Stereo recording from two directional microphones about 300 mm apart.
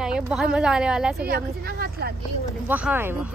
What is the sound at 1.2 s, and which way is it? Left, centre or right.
Speech, right.